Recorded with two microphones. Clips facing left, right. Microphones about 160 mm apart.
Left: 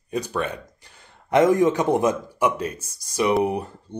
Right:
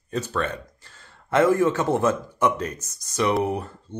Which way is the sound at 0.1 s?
15° left (ahead or behind).